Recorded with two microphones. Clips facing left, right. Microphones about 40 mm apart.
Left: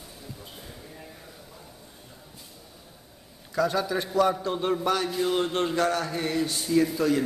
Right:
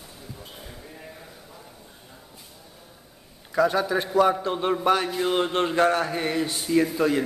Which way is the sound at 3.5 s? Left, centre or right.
Centre.